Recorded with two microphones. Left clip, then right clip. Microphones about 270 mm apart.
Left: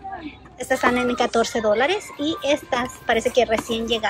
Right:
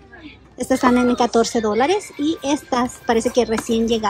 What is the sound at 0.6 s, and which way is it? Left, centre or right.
A woman's voice, centre.